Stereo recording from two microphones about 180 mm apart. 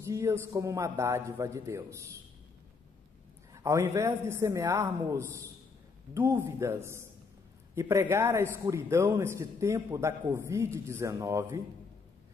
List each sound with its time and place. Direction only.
0.0 s a man's voice: 15° right (ahead or behind)
3.5 s a man's voice: 15° right (ahead or behind)